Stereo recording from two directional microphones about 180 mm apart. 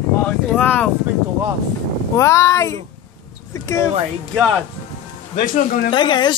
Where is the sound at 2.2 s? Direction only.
15° left (ahead or behind).